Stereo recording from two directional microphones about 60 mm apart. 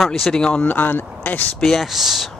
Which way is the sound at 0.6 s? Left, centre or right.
Left.